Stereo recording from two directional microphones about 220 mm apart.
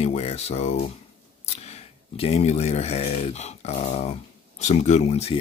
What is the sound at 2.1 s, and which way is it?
Speech, 25° left (ahead or behind).